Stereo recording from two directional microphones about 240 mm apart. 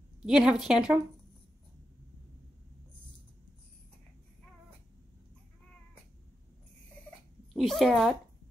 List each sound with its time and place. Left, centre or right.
0.2 s a woman's voice: centre
7.5 s a woman's voice: centre